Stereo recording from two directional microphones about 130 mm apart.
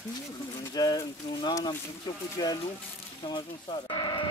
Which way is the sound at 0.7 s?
30° left (ahead or behind).